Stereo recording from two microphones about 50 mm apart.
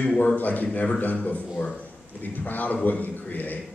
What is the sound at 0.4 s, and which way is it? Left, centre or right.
A man's voice, left.